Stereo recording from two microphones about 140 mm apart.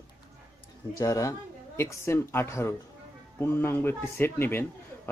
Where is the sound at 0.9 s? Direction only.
25° left (ahead or behind).